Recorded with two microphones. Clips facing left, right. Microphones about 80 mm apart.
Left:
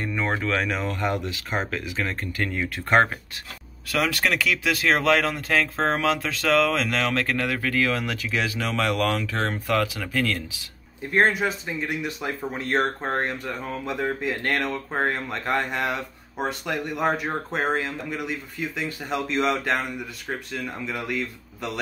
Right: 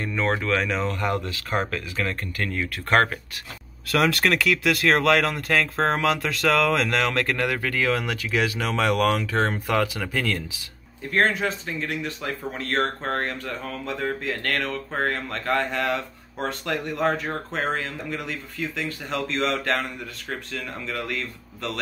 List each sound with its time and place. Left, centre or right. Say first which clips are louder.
0.0 s speech: right 1 dB; centre
3.9 s speech: right 3 dB; centre
7.3 s speech: even; centre
11.1 s speech: left 1 dB; centre